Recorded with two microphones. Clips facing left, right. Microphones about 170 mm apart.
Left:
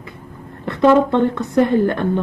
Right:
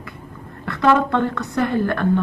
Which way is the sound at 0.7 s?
20° left (ahead or behind).